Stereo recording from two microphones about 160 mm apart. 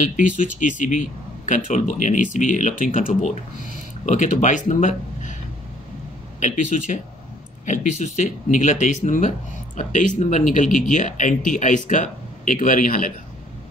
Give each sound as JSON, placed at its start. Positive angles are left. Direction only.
{"t": 0.4, "sound": "speech", "side_deg": 55}
{"t": 6.4, "sound": "speech", "side_deg": 50}
{"t": 8.0, "sound": "speech", "side_deg": 50}